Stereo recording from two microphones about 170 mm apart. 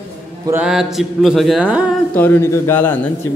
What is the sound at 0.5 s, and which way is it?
Speech, 5° right (ahead or behind).